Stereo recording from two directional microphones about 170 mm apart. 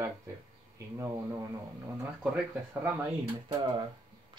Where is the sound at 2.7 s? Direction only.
15° right (ahead or behind).